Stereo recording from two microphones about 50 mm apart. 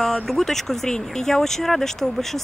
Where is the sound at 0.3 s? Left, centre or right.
Centre.